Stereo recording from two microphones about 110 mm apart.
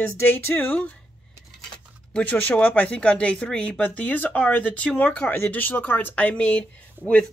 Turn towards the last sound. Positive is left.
turn(degrees=10)  # may be behind; listen again after turning